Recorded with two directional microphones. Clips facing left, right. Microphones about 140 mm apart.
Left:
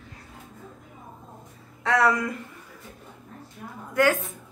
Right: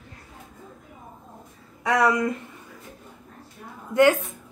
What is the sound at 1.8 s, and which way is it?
Speech, 15° right (ahead or behind).